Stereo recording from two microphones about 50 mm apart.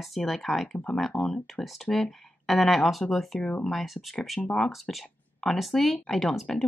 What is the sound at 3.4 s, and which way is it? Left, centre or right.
Speech, left.